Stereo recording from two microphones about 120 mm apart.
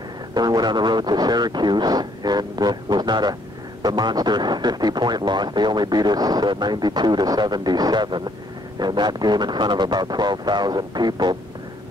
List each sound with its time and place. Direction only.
0.3 s speech: 35° right (ahead or behind)